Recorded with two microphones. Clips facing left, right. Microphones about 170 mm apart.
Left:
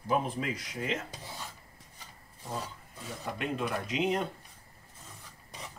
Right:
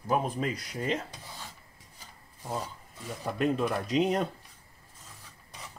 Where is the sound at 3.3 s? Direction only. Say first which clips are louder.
Right 6 dB; 40° right (ahead or behind).